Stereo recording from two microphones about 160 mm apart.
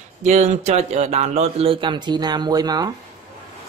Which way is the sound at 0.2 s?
45° right (ahead or behind).